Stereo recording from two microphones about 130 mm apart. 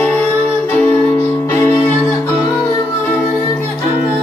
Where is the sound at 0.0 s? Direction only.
15° left (ahead or behind).